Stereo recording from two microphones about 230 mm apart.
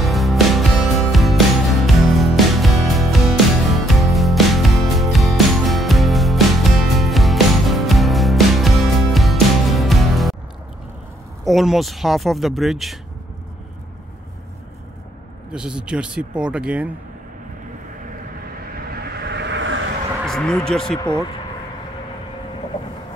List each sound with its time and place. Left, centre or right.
0.0 s music: centre
11.4 s speech: centre
15.5 s speech: centre
18.9 s vehicle: right
20.2 s speech: centre